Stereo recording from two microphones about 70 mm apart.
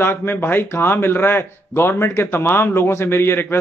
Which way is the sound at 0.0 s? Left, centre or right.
Left.